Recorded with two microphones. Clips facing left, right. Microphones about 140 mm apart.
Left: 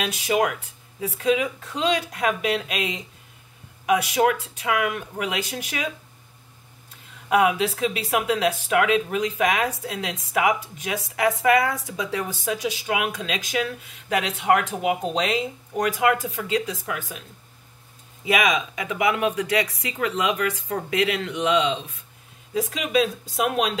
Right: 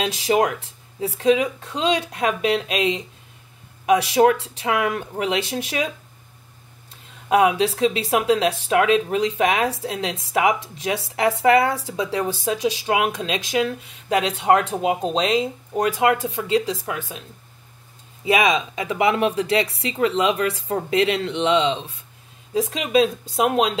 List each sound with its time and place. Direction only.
0.0 s speech: 30° right (ahead or behind)
7.2 s speech: 25° right (ahead or behind)
18.2 s speech: 25° right (ahead or behind)